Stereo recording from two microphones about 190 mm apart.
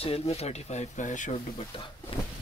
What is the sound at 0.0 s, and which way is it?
Speech, 35° left (ahead or behind).